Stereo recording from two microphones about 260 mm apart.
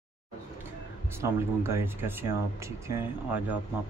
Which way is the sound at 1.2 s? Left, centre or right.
Centre.